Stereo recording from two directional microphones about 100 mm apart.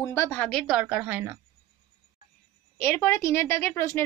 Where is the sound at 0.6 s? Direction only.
10° right (ahead or behind).